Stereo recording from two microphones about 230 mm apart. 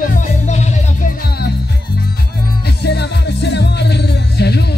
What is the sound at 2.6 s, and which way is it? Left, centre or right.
Music, left.